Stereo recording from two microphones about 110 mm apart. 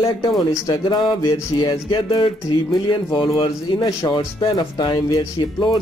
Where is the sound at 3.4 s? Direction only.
35° left (ahead or behind).